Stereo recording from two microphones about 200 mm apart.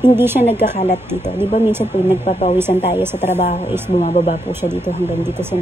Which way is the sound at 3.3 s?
35° left (ahead or behind).